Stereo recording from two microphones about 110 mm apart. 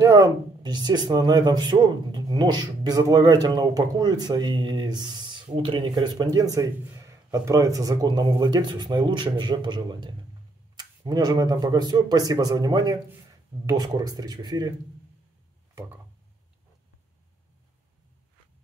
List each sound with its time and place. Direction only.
0.0 s a man's voice: 30° right (ahead or behind)